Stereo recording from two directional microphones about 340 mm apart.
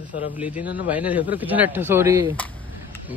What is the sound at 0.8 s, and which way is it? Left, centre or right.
A man's voice, centre.